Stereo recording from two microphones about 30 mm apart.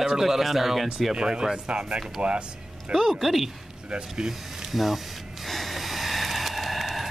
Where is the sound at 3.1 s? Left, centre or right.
Centre.